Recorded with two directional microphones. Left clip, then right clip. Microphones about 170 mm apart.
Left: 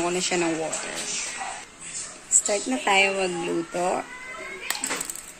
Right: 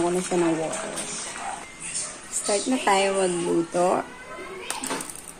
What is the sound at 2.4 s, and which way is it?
Speech, 25° left (ahead or behind).